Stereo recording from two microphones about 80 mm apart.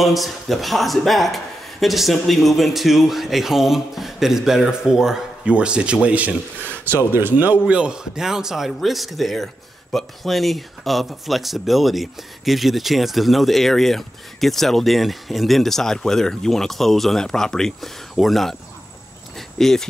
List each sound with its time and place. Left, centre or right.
0.0 s a man's voice: centre
6.6 s speech: centre
7.1 s a man's voice: right
7.6 s a man's voice: centre
19.3 s a sound: centre